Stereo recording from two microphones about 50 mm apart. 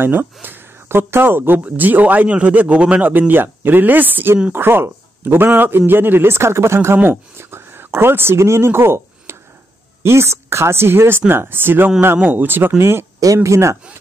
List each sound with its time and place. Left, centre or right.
0.0 s speech: right
3.1 s speech: right
4.5 s a man's voice: right
13.4 s speech: right